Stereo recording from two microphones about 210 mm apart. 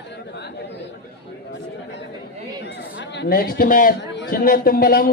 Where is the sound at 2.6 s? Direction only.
55° left (ahead or behind).